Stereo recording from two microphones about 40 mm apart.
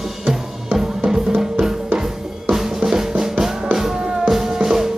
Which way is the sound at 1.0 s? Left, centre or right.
Centre.